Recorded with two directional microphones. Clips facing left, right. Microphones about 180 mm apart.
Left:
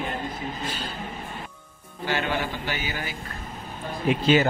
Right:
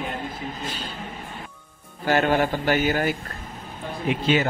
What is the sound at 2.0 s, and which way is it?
A man's voice, 50° right (ahead or behind).